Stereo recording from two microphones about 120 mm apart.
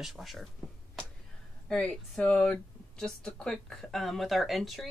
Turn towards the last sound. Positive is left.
turn(degrees=0)  # may be behind; listen again after turning